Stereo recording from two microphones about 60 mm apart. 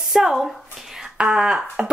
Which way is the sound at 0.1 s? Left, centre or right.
Centre.